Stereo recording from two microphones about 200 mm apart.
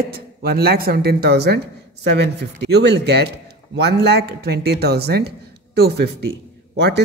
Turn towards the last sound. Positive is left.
turn(degrees=-60)  # may be behind; listen again after turning